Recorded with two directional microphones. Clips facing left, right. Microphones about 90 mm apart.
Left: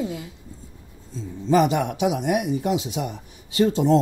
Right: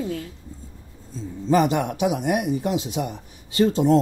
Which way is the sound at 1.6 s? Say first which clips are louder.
Even; 45° right (ahead or behind).